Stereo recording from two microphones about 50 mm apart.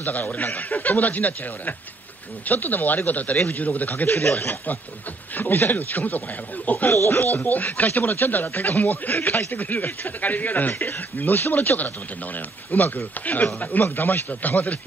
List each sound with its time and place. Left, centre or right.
0.0 s speech: left